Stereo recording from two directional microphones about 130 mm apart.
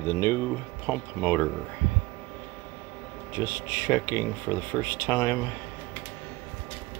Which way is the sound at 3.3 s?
20° left (ahead or behind).